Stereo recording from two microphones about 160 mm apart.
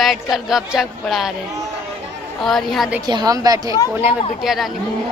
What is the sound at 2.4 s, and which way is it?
Speech, centre (ahead or behind).